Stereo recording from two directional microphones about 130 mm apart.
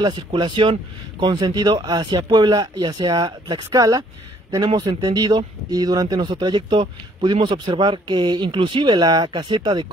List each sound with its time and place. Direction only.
0.0 s speech: 35° right (ahead or behind)
4.6 s speech: 45° right (ahead or behind)
5.0 s speech: 30° right (ahead or behind)